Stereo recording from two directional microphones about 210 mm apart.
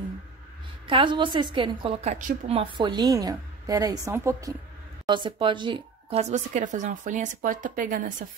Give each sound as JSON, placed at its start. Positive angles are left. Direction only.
{"t": 0.8, "sound": "a woman's voice", "side_deg": -25}
{"t": 2.5, "sound": "a woman's voice", "side_deg": -20}